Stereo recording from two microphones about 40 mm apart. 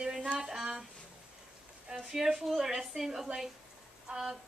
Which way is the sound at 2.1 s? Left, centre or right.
Centre.